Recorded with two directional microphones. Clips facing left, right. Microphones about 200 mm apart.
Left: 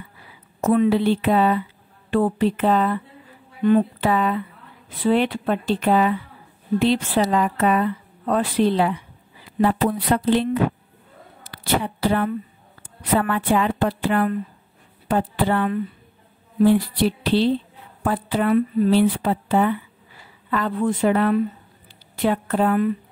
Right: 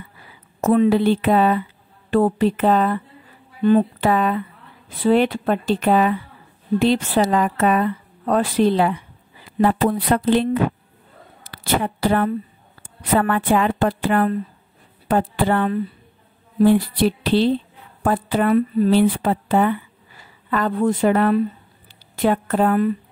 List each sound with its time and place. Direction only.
0.6 s a woman's voice: 45° right (ahead or behind)
4.0 s a woman's voice: 50° right (ahead or behind)
17.2 s a woman's voice: 45° right (ahead or behind)